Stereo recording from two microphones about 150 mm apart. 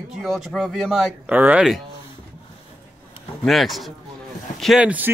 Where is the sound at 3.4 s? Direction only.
Centre (ahead or behind).